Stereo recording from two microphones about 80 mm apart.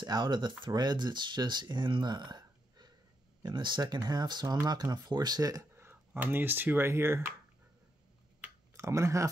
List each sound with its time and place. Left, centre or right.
0.0 s speech: right
5.8 s speech: right
8.7 s speech: right